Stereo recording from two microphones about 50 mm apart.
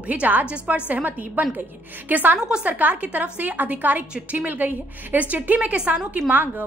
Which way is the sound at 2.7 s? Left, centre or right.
Right.